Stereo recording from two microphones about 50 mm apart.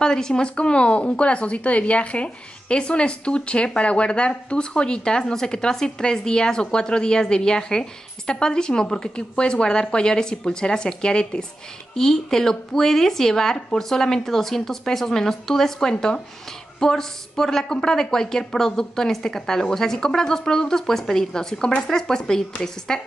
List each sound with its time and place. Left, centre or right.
0.0 s speech: centre